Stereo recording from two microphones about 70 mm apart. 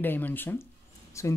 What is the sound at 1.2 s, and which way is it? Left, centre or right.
Speech, left.